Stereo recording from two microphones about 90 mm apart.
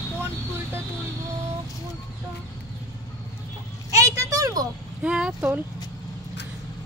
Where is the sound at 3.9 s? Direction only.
40° right (ahead or behind).